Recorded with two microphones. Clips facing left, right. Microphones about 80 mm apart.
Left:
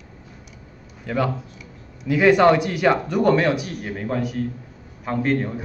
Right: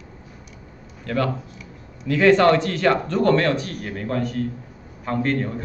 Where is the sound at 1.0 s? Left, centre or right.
Centre.